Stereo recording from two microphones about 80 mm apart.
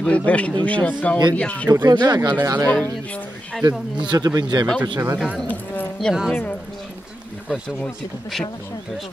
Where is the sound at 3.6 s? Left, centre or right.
Right.